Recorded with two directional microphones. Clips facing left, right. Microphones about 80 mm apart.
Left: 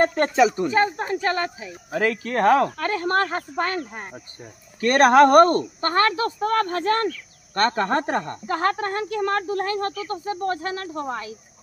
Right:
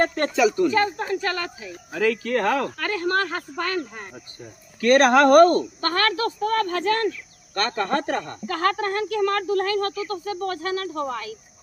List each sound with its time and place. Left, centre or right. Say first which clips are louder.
0.0 s speech: left 2 dB; left